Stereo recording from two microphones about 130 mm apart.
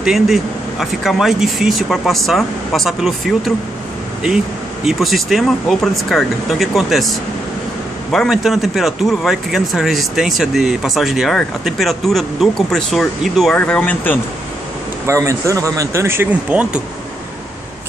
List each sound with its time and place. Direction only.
0.0 s speech: centre (ahead or behind)
4.8 s speech: centre (ahead or behind)
15.0 s speech: 25° right (ahead or behind)